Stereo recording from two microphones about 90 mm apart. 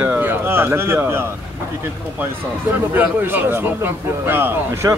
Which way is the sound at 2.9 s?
20° right (ahead or behind).